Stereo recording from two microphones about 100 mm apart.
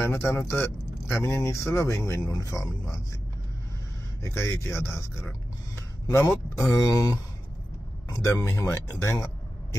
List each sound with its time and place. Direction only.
0.0 s speech: 25° left (ahead or behind)
4.2 s speech: 25° left (ahead or behind)
5.8 s a sound: 30° left (ahead or behind)
6.7 s speech: 35° left (ahead or behind)